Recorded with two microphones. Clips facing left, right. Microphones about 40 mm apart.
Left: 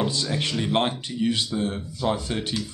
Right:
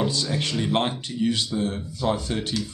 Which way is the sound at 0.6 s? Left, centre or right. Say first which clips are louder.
Even; centre.